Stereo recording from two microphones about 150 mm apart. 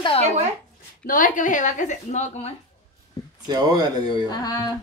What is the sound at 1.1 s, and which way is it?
A woman's voice, 60° left (ahead or behind).